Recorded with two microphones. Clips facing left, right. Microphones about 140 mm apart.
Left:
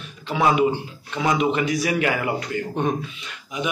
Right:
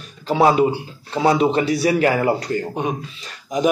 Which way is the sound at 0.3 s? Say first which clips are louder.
Right 4 dB; 35° right (ahead or behind).